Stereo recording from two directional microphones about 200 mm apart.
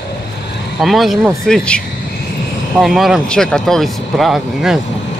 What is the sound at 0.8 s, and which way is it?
Speech, centre (ahead or behind).